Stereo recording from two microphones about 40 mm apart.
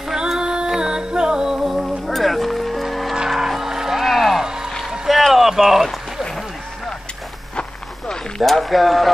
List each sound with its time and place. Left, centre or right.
0.1 s music: centre
0.4 s music: right; by 4.5 s centre
5.0 s a sound: centre
8.5 s speech: centre